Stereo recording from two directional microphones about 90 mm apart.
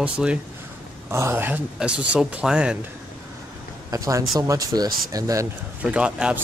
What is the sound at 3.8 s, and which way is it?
Speech, 40° right (ahead or behind).